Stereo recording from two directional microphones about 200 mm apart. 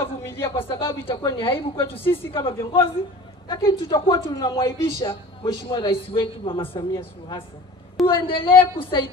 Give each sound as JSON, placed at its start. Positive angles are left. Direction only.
{"t": 0.3, "sound": "speech", "side_deg": 25}
{"t": 8.1, "sound": "speech", "side_deg": 25}